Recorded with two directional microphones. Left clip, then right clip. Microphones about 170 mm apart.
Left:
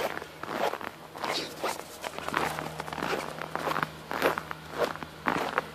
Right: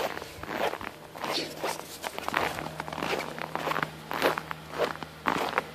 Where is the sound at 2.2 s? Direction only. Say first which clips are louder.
Right 1 dB; 20° right (ahead or behind).